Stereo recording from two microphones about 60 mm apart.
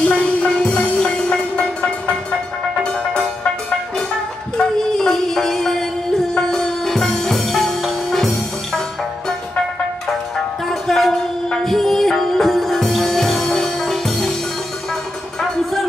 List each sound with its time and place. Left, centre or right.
0.0 s music: centre
4.6 s music: centre
10.7 s music: centre